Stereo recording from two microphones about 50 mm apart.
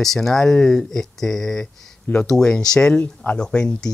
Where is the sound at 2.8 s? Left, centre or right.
Left.